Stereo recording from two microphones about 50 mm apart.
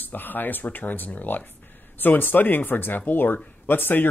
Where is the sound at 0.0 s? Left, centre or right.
Left.